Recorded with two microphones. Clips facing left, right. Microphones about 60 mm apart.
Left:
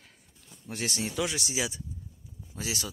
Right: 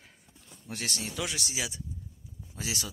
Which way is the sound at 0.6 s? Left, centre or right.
Centre.